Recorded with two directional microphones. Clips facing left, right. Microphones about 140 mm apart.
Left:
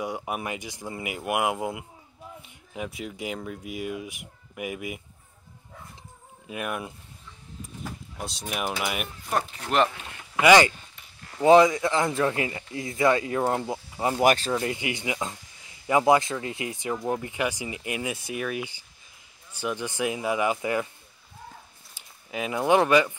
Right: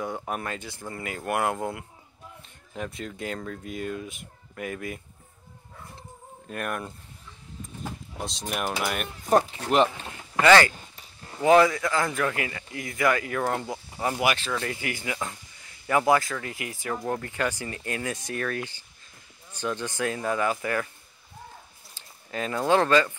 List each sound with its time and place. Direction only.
0.0 s speech: 10° left (ahead or behind)
6.5 s speech: 5° left (ahead or behind)
8.2 s speech: 5° left (ahead or behind)
10.4 s speech: 15° left (ahead or behind)
14.2 s speech: 40° left (ahead or behind)
14.6 s speech: 20° left (ahead or behind)
21.9 s speech: 10° left (ahead or behind)